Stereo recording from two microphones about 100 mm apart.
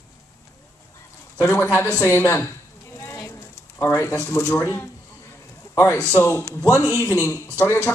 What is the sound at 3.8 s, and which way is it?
Speech, 25° left (ahead or behind).